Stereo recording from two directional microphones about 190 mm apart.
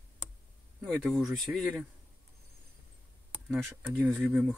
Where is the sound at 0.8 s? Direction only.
5° left (ahead or behind).